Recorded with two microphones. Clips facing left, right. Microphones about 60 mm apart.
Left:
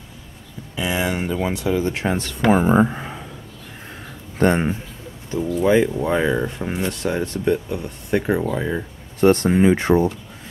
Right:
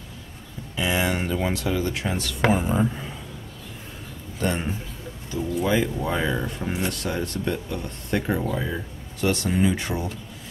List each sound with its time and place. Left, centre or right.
0.7 s speech: centre
2.0 s speech: left
4.4 s speech: left
5.6 s speech: left